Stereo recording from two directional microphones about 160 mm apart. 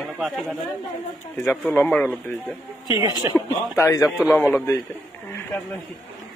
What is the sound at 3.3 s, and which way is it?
Speech, 20° left (ahead or behind).